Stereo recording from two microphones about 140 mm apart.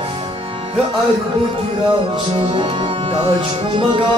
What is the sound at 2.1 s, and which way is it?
Music, 40° right (ahead or behind).